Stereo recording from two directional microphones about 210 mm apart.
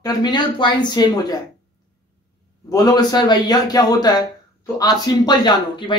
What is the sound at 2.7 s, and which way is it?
A man's voice, 20° left (ahead or behind).